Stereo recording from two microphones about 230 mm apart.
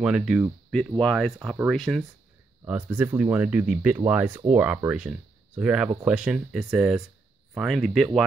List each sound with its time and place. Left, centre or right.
0.0 s speech: centre